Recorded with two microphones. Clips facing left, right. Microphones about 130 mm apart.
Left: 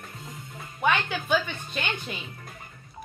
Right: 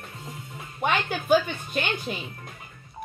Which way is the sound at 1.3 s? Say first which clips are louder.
Right 7 dB; 40° right (ahead or behind).